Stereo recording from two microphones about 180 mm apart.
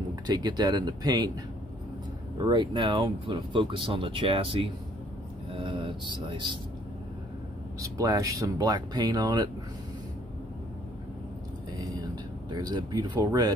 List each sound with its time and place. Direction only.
0.1 s speech: 20° right (ahead or behind)
7.8 s speech: 20° right (ahead or behind)
11.8 s a sound: 25° right (ahead or behind)